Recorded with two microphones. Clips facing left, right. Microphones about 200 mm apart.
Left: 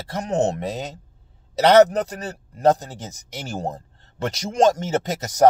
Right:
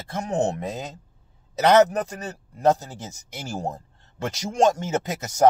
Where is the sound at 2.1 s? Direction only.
35° left (ahead or behind).